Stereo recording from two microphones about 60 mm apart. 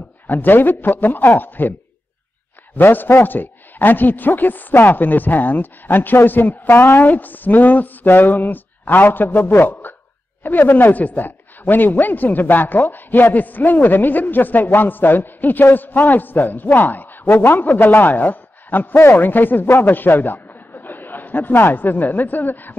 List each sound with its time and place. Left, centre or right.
0.3 s a man's voice: left
2.8 s a man's voice: left